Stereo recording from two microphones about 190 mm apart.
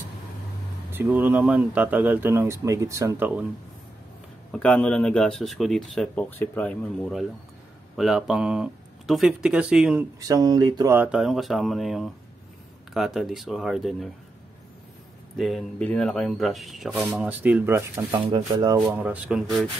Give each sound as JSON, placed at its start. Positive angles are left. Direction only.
{"t": 0.9, "sound": "speech", "side_deg": -10}
{"t": 4.5, "sound": "speech", "side_deg": 5}
{"t": 10.2, "sound": "speech", "side_deg": -20}
{"t": 11.0, "sound": "speech", "side_deg": -5}
{"t": 15.3, "sound": "speech", "side_deg": 0}
{"t": 18.1, "sound": "speech", "side_deg": -25}
{"t": 18.8, "sound": "speech", "side_deg": -10}